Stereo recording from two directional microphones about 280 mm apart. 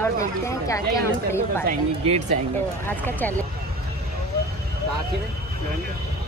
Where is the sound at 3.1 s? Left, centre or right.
Centre.